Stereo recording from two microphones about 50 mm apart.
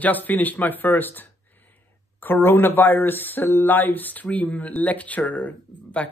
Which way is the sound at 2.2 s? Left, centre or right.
Left.